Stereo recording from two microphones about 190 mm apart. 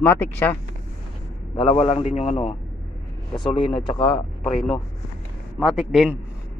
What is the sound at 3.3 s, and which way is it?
Speech, 25° left (ahead or behind).